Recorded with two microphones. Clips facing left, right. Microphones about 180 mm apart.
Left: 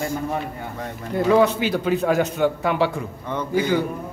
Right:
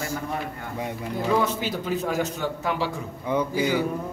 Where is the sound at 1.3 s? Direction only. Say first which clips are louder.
Left 7 dB; 70° left (ahead or behind).